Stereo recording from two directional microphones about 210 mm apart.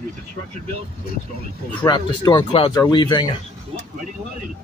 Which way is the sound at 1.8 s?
20° left (ahead or behind).